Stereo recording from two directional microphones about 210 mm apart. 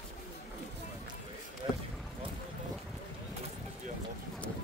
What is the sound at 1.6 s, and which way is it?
Basketball bounce, 20° right (ahead or behind).